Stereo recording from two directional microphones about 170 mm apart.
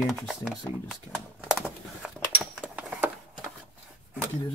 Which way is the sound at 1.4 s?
5° right (ahead or behind).